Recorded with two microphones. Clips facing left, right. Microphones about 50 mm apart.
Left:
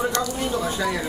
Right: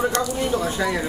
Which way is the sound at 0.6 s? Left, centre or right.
Centre.